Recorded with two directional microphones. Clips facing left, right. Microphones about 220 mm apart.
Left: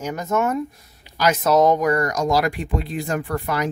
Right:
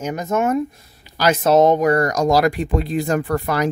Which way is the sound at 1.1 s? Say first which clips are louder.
Right 3 dB; 30° right (ahead or behind).